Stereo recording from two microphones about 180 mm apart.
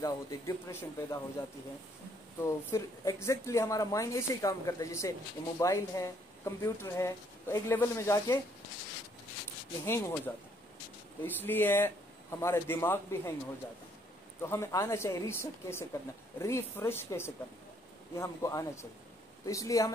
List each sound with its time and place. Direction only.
0.0 s speech: 20° left (ahead or behind)
2.4 s speech: 15° left (ahead or behind)
9.8 s speech: 15° left (ahead or behind)
14.4 s speech: 15° left (ahead or behind)